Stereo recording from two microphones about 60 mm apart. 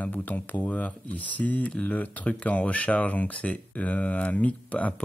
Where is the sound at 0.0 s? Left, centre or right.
Left.